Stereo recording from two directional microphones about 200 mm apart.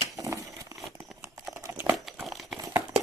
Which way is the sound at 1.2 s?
15° right (ahead or behind).